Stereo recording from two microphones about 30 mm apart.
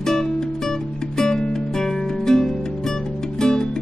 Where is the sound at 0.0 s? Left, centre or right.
Centre.